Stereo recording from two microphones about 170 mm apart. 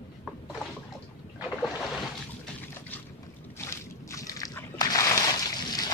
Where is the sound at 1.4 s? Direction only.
5° right (ahead or behind).